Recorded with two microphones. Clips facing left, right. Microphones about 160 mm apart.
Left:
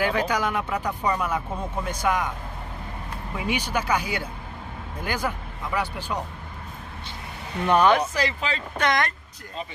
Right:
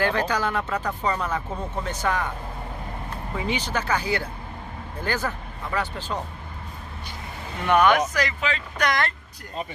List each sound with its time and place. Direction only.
0.0 s speech: 10° left (ahead or behind)
3.4 s speech: 10° left (ahead or behind)
7.6 s speech: 30° left (ahead or behind)